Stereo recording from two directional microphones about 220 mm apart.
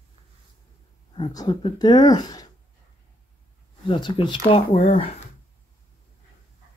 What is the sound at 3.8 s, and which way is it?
Speech, 20° left (ahead or behind).